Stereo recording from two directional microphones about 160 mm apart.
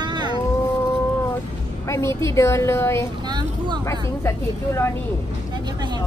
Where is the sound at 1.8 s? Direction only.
15° left (ahead or behind).